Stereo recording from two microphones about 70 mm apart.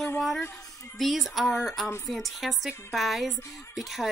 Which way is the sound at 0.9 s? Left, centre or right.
Centre.